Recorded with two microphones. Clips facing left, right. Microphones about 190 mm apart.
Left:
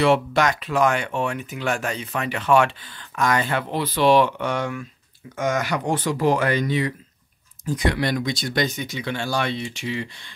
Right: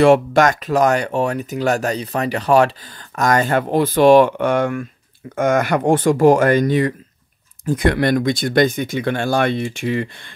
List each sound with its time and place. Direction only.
0.0 s speech: 45° right (ahead or behind)